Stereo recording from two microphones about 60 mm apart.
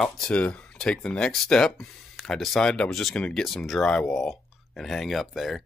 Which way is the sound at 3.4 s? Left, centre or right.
Centre.